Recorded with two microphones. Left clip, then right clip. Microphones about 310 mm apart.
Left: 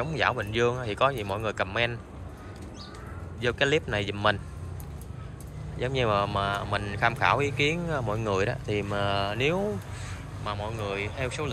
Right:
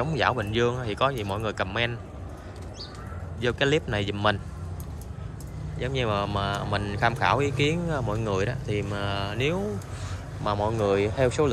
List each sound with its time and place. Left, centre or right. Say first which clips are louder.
0.0 s speech: right 2 dB; centre
3.3 s speech: right 1 dB; centre
5.8 s speech: left 2 dB; centre